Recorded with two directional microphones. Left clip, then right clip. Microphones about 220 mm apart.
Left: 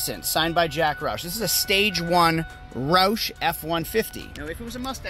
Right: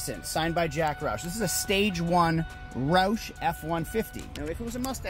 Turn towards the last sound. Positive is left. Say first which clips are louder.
# left 1 dB
turn(degrees=0)  # may be behind; listen again after turning